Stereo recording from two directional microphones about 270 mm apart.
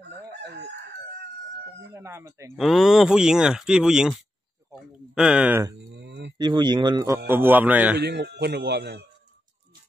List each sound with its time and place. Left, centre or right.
0.3 s chicken: right
1.9 s speech: centre
5.9 s a sound: right
6.3 s speech: centre
8.0 s speech: right